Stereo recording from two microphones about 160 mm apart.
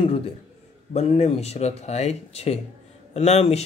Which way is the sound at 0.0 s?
35° left (ahead or behind).